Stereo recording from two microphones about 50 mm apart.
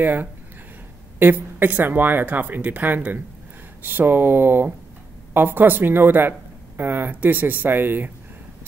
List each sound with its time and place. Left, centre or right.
0.0 s speech: right
3.8 s speech: right